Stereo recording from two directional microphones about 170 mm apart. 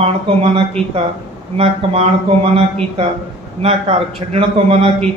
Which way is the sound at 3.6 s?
35° right (ahead or behind).